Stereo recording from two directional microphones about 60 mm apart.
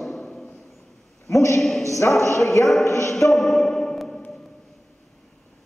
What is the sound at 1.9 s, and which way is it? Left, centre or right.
A woman's voice, left.